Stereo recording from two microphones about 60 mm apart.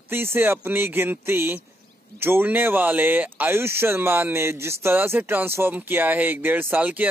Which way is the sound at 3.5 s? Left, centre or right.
Right.